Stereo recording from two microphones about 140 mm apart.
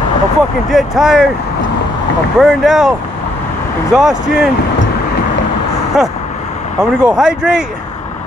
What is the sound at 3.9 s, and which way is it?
Speech, 5° right (ahead or behind).